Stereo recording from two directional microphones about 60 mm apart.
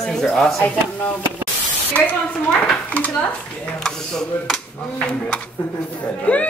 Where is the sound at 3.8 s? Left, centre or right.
Centre.